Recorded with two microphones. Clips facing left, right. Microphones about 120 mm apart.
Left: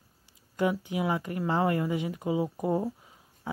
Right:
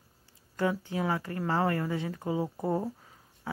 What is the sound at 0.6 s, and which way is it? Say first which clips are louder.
Speech: left 2 dB; 15° left (ahead or behind).